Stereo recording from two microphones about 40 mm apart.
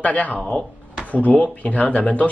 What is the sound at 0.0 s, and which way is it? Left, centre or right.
Speech, left.